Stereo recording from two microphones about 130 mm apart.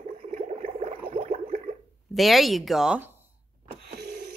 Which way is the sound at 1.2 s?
75° right (ahead or behind).